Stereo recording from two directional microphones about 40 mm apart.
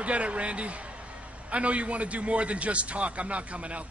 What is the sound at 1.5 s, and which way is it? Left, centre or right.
A man's voice, right.